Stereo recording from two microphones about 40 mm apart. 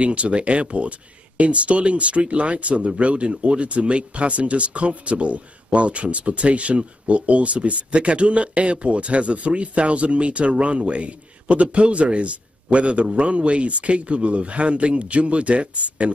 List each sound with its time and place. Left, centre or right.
0.0 s speech: right